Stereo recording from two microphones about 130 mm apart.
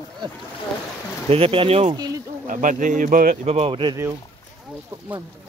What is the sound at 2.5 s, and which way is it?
Speech, 90° right.